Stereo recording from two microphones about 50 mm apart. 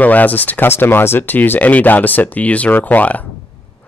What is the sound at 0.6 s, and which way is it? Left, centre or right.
Speech, left.